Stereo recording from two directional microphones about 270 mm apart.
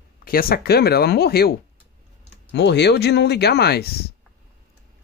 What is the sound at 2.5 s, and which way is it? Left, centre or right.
Speech, left.